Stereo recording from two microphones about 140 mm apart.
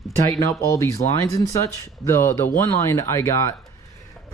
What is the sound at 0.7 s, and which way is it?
Speech, 20° left (ahead or behind).